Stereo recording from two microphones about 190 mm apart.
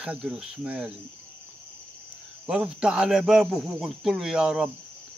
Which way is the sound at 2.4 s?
5° right (ahead or behind).